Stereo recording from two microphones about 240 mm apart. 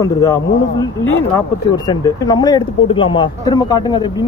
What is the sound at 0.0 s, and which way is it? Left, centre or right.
Speech, centre.